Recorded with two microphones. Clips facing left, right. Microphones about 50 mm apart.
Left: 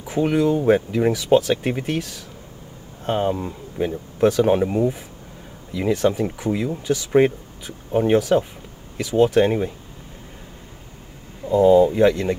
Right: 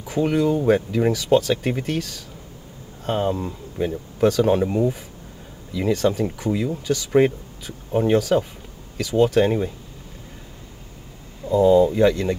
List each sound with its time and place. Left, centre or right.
0.1 s speech: centre
11.4 s speech: left